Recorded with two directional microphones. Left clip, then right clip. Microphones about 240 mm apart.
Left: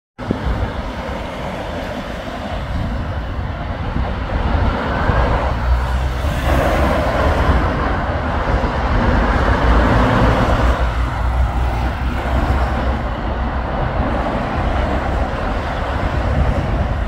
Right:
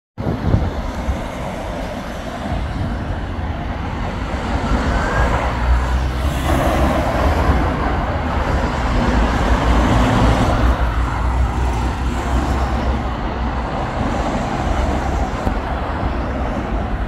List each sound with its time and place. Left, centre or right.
6.4 s vehicle: left
9.2 s vehicle: centre